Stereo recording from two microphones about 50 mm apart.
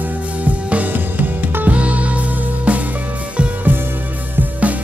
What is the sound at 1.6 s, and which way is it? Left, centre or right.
Music, right.